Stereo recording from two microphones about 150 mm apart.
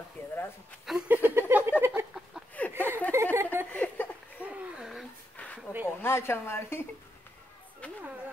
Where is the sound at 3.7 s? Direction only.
10° left (ahead or behind).